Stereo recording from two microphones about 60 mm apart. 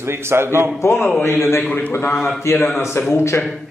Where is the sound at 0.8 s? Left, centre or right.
Left.